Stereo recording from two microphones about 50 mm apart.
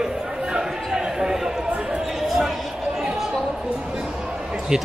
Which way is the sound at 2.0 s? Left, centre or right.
Centre.